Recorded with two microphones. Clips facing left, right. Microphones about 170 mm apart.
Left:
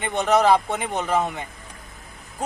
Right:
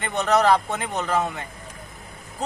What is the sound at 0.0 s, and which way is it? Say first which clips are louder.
Speech: left 1 dB; 15° left (ahead or behind).